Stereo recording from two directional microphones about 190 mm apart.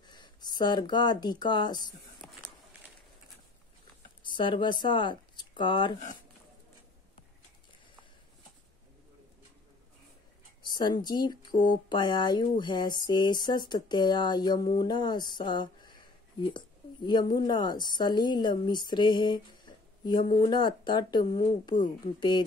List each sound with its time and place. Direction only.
0.0 s speech: 20° left (ahead or behind)
2.2 s a sound: 5° left (ahead or behind)
4.2 s speech: 25° left (ahead or behind)
10.7 s a woman's voice: 20° left (ahead or behind)
14.8 s a sound: 20° left (ahead or behind)
16.5 s a woman's voice: 25° left (ahead or behind)